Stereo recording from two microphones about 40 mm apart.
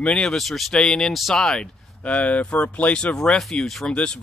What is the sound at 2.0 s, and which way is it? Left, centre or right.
Speech, left.